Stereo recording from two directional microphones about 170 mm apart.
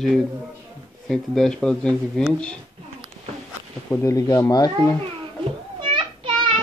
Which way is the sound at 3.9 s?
20° left (ahead or behind).